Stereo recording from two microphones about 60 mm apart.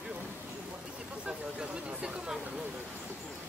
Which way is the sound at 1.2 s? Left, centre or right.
Centre.